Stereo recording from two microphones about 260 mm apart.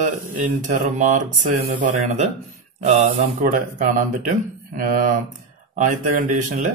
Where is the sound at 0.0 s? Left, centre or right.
Right.